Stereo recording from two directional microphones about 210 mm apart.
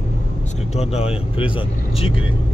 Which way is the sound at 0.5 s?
30° left (ahead or behind).